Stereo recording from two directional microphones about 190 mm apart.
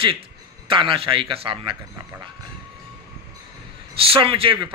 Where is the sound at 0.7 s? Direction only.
25° right (ahead or behind).